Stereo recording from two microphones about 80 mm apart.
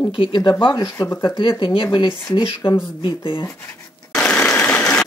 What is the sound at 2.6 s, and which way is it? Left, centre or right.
Speech, left.